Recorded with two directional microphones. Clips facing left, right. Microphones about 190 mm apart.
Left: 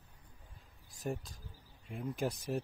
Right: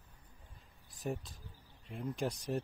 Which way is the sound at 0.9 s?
Centre (ahead or behind).